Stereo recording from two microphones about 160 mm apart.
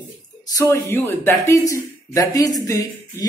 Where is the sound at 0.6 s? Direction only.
15° left (ahead or behind).